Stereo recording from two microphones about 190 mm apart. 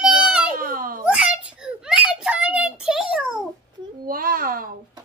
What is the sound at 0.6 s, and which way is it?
Crying, 50° right (ahead or behind).